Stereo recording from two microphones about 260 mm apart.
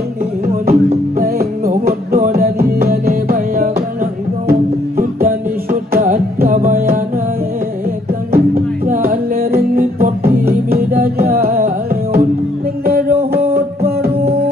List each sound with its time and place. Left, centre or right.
0.5 s music: right
8.3 s music: right